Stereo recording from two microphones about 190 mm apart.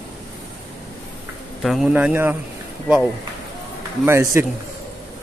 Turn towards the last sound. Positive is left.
turn(degrees=-15)  # may be behind; listen again after turning